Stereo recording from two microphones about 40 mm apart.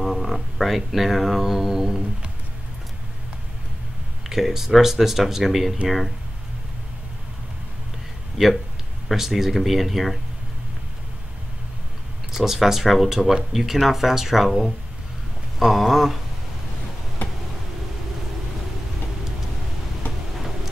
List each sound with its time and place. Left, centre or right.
0.0 s speech: centre
4.2 s speech: centre
8.4 s speech: right
9.1 s speech: centre
12.3 s speech: centre
17.2 s a sound: left